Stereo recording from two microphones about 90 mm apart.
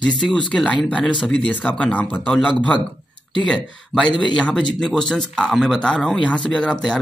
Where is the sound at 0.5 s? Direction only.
10° left (ahead or behind).